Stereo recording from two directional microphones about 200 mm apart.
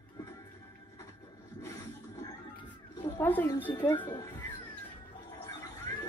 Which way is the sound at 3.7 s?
20° left (ahead or behind).